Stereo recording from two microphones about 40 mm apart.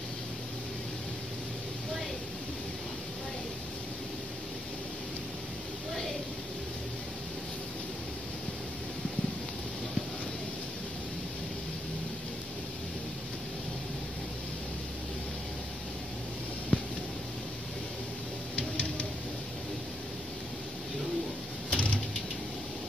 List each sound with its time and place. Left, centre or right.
16.7 s a sound: left
18.6 s music: left
21.6 s mechanisms: left